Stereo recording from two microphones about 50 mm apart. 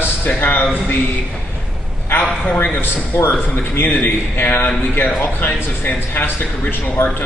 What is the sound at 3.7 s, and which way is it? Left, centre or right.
Speech, left.